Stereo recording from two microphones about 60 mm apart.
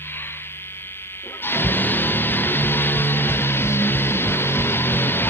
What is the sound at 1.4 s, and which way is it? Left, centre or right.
Music, left.